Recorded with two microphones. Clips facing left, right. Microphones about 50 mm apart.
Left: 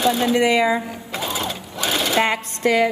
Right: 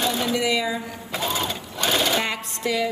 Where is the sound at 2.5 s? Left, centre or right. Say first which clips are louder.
Left 6 dB; left.